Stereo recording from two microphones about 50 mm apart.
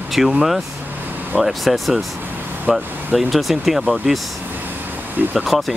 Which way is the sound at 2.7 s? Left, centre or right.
Centre.